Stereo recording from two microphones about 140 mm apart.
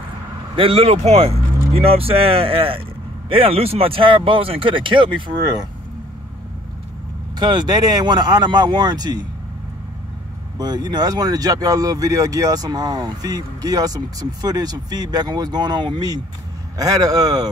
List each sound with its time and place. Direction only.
0.6 s speech: 45° right (ahead or behind)
7.3 s speech: 30° right (ahead or behind)
10.6 s speech: 30° right (ahead or behind)